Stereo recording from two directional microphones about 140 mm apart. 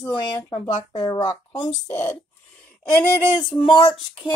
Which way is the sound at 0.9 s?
30° left (ahead or behind).